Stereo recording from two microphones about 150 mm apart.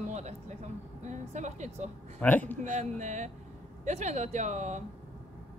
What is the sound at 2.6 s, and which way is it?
Speech, 50° right (ahead or behind).